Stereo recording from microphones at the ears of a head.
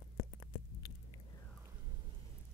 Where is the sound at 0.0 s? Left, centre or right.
Left.